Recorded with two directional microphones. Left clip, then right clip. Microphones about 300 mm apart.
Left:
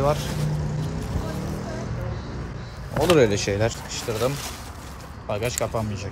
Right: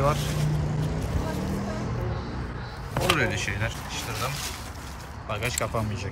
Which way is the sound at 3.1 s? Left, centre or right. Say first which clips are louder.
Left 10 dB; centre.